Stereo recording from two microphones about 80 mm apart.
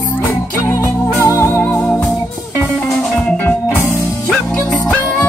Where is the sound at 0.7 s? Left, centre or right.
Left.